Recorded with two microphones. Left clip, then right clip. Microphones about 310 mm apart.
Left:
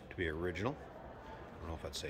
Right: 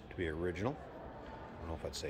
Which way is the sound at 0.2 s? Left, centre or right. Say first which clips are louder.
Even; centre.